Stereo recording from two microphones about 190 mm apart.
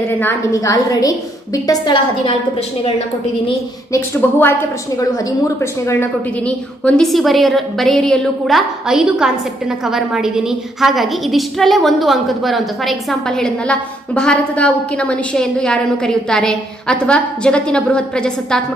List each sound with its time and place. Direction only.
0.2 s a woman's voice: 15° left (ahead or behind)
3.4 s a woman's voice: 15° left (ahead or behind)